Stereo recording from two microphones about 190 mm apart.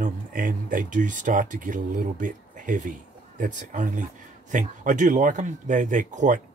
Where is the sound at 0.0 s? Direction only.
45° right (ahead or behind).